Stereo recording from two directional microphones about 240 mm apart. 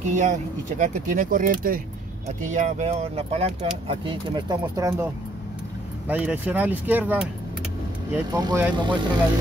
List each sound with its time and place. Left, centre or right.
0.1 s speech: right
6.0 s speech: centre
8.3 s speech: centre